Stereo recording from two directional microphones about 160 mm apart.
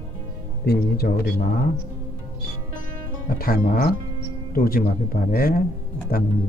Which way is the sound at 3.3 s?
65° left (ahead or behind).